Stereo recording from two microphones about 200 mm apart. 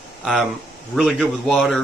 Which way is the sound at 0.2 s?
Centre (ahead or behind).